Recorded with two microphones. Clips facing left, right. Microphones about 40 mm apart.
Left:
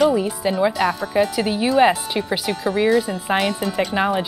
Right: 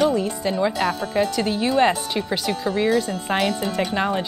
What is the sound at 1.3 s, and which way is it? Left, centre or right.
Speech, centre.